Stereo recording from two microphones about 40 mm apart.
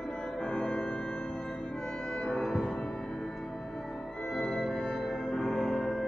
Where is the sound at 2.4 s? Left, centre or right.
Centre.